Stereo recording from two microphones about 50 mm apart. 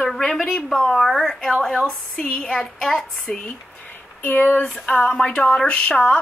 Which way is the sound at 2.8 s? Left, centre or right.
Centre.